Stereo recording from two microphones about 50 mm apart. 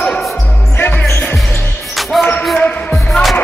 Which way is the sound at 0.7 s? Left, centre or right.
Left.